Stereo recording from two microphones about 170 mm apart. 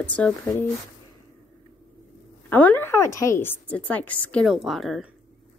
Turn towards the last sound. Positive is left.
turn(degrees=0)  # may be behind; listen again after turning